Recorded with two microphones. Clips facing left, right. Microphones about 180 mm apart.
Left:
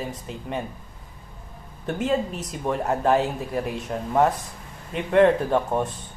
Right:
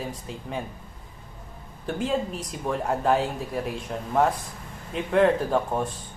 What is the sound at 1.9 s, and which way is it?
Speech, centre (ahead or behind).